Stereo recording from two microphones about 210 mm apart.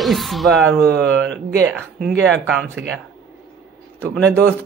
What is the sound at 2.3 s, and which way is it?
Speech, 5° left (ahead or behind).